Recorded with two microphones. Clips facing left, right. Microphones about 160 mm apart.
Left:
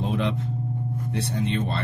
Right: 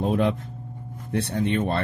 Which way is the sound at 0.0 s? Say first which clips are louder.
Right 4 dB; 45° right (ahead or behind).